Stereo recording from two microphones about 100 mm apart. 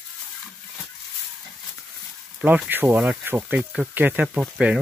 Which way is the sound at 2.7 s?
15° right (ahead or behind).